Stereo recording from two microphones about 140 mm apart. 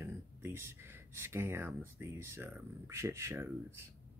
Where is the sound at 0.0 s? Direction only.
15° right (ahead or behind).